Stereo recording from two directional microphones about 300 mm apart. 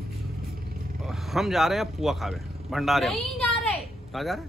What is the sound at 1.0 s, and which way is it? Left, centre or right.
Speech, centre.